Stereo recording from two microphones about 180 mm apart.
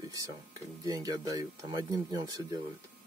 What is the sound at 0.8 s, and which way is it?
Speech, 20° right (ahead or behind).